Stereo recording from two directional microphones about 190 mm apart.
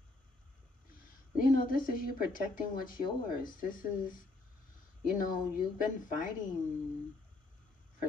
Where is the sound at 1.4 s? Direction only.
45° left (ahead or behind).